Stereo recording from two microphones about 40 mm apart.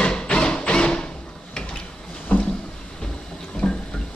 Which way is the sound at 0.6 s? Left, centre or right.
Left.